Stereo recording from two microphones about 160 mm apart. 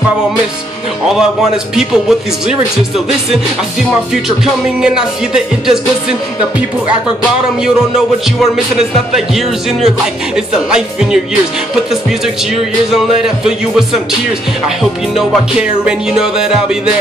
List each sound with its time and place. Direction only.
1.8 s speech: 5° right (ahead or behind)
4.8 s speech: 5° right (ahead or behind)
9.1 s speech: centre (ahead or behind)
13.2 s speech: 5° right (ahead or behind)
15.8 s speech: 5° right (ahead or behind)